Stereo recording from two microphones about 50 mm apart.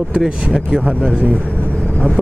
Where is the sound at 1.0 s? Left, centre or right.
Left.